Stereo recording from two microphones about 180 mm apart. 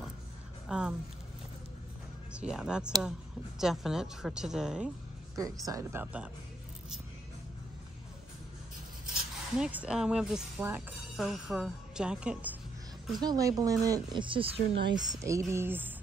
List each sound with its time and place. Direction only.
0.7 s speech: 5° right (ahead or behind)
2.3 s a woman's voice: 5° right (ahead or behind)
5.3 s speech: 20° right (ahead or behind)
9.1 s speech: 5° right (ahead or behind)
13.2 s a woman's voice: 20° right (ahead or behind)